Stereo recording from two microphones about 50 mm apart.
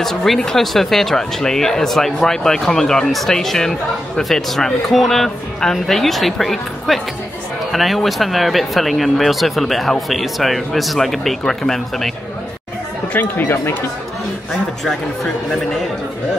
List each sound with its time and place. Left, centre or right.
0.0 s speech: centre
13.4 s speech: left